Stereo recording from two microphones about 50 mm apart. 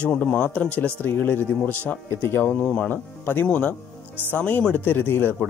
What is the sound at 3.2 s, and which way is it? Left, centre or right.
Speech, left.